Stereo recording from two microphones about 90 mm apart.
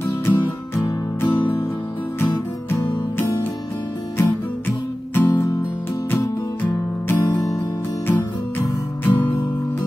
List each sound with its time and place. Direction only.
0.0 s music: 25° left (ahead or behind)
4.2 s music: 20° left (ahead or behind)
6.6 s music: 20° left (ahead or behind)